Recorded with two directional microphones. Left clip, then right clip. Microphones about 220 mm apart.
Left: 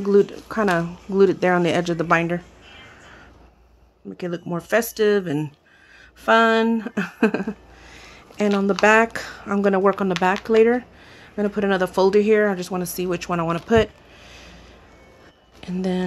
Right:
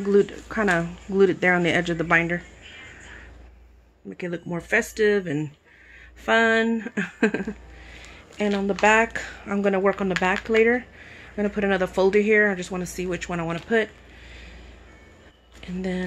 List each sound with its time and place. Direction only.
0.0 s speech: 10° left (ahead or behind)
4.2 s speech: 15° left (ahead or behind)
15.6 s speech: 20° left (ahead or behind)